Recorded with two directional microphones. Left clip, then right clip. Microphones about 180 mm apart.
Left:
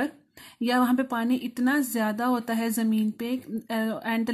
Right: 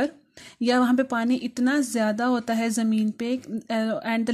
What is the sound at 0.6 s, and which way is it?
Speech, 30° right (ahead or behind).